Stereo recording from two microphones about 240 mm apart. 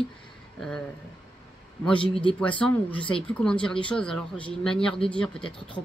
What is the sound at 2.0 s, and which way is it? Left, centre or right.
Speech, left.